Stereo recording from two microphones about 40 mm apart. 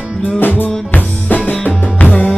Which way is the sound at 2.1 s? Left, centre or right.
Left.